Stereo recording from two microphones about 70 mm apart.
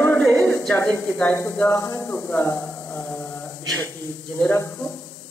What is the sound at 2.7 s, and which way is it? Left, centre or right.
Mantra, left.